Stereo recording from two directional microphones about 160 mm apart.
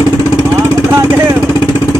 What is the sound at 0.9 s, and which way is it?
Speech, 15° right (ahead or behind).